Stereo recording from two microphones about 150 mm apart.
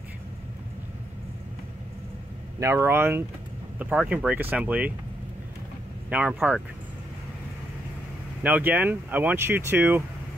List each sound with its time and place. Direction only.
2.6 s speech: 20° right (ahead or behind)
6.0 s speech: 10° right (ahead or behind)
8.4 s speech: 10° right (ahead or behind)